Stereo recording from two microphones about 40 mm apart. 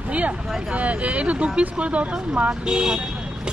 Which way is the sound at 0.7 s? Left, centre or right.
Right.